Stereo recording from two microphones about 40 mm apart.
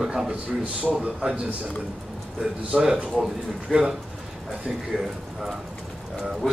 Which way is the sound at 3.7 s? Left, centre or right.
Centre.